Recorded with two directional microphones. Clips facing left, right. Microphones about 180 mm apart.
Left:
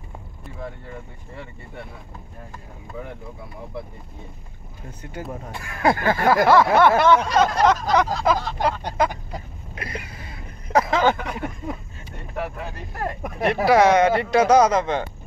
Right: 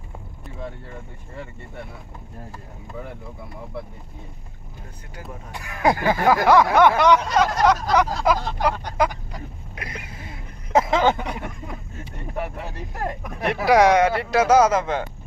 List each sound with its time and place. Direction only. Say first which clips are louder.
5.5 s speech: even; 15° right (ahead or behind)
9.8 s a sound: left 3 dB; 20° right (ahead or behind)
13.0 s speech: left 3 dB; 15° right (ahead or behind)